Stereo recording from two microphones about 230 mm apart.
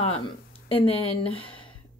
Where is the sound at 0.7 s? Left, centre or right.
Left.